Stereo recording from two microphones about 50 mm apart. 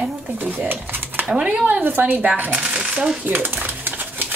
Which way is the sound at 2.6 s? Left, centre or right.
Centre.